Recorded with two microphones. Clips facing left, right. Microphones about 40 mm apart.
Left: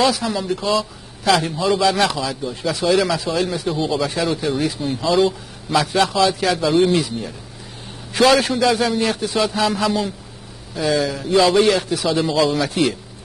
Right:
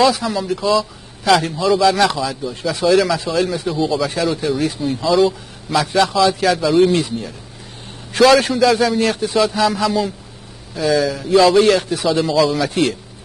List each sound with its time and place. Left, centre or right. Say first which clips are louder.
0.0 s a man's voice: right 3 dB; centre
3.7 s speech: right 4 dB; centre
4.0 s a man's voice: right 2 dB; centre